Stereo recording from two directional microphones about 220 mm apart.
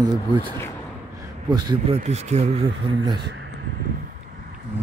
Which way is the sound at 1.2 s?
20° right (ahead or behind).